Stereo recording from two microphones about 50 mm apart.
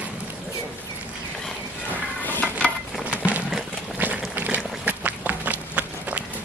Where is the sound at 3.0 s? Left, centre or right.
Right.